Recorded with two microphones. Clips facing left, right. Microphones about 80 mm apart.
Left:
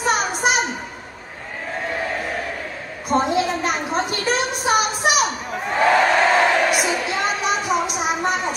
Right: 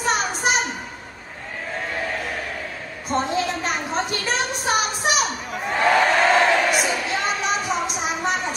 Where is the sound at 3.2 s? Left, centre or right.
Centre.